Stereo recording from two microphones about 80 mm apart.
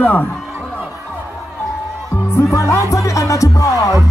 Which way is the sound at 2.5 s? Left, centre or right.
Left.